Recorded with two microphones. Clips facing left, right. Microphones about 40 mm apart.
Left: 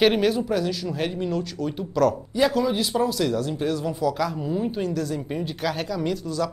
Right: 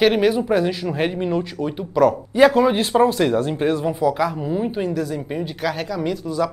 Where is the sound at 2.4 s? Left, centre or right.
Right; by 6.5 s centre.